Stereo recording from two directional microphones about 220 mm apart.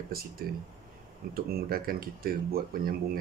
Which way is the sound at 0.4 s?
45° right (ahead or behind).